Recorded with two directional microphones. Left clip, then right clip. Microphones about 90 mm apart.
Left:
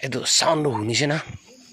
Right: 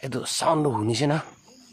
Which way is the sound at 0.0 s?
20° right (ahead or behind).